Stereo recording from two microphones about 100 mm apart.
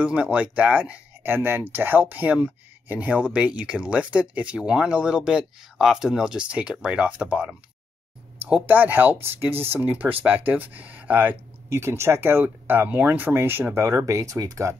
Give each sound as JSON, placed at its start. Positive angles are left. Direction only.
{"t": 0.0, "sound": "speech", "side_deg": -10}